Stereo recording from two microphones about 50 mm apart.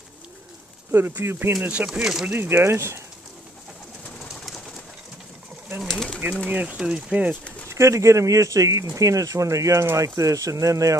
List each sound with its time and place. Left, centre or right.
0.9 s speech: right
1.9 s speech: centre
2.3 s speech: right
5.9 s bird: centre
6.5 s speech: right
6.8 s speech: centre
7.7 s speech: right